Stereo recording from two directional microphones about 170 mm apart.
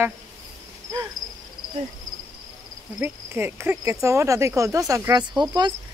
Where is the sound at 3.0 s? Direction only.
15° right (ahead or behind).